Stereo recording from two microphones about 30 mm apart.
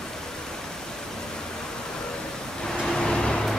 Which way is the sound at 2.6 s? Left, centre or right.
Centre.